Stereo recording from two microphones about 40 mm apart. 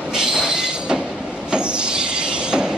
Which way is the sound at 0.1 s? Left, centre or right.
Centre.